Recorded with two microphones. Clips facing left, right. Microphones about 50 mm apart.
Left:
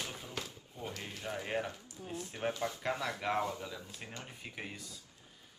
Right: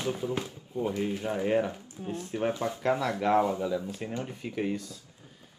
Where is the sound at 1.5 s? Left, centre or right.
Centre.